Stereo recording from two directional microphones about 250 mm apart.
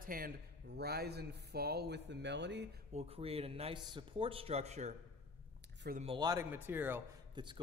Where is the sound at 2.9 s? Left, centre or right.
Right.